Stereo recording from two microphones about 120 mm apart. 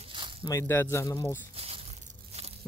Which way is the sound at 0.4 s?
25° left (ahead or behind).